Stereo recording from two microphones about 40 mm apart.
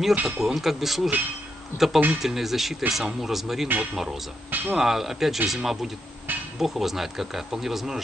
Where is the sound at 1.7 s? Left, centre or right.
Left.